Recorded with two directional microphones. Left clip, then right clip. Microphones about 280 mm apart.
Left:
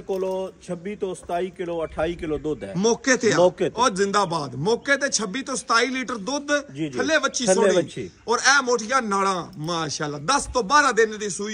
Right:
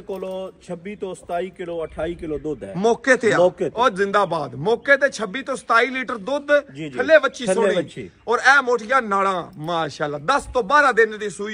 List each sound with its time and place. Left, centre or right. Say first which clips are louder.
0.2 s speech: left 3 dB; left
2.2 s speech: even; centre